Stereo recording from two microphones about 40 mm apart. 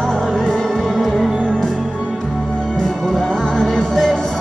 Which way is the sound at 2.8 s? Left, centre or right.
Centre.